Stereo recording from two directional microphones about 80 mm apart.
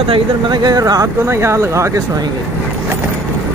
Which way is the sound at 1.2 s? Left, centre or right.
Right.